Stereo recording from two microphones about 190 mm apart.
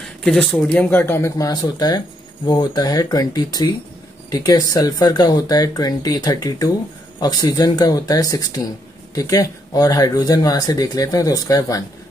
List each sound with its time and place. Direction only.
0.0 s speech: centre (ahead or behind); by 11.8 s 20° left (ahead or behind)